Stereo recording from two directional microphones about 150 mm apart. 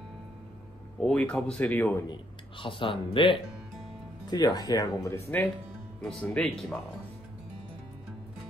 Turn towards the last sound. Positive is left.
turn(degrees=0)  # may be behind; listen again after turning